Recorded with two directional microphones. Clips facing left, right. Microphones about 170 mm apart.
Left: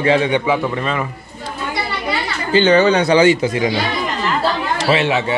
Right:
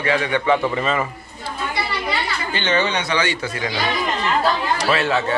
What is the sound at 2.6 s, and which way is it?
Speech, 40° left (ahead or behind).